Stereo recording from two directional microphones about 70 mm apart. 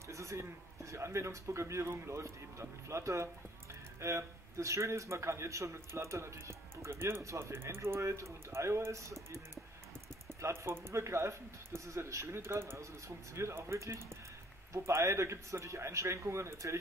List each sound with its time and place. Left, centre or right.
0.1 s a man's voice: right
10.4 s a man's voice: right